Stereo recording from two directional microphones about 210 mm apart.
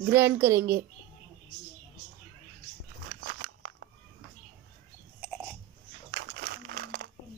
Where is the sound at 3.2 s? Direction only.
55° right (ahead or behind).